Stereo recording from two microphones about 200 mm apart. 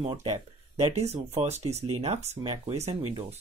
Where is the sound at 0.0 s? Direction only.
30° right (ahead or behind).